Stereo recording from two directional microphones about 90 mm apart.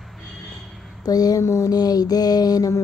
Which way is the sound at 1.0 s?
45° left (ahead or behind).